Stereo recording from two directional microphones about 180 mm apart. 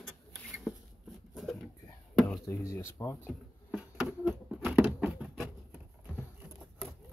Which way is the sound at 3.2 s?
5° right (ahead or behind).